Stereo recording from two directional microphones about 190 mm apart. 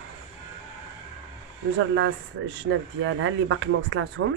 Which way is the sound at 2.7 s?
85° right.